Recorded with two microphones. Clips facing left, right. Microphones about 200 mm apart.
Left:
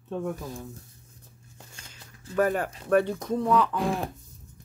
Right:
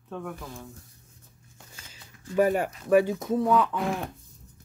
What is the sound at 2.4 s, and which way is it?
Speech, 10° right (ahead or behind).